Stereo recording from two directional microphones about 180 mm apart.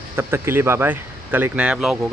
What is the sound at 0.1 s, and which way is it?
Speech, 15° right (ahead or behind).